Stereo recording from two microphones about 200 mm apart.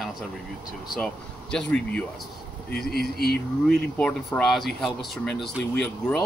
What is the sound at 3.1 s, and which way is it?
Speech, 50° left (ahead or behind).